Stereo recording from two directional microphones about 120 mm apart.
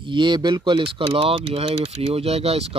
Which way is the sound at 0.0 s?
40° right (ahead or behind).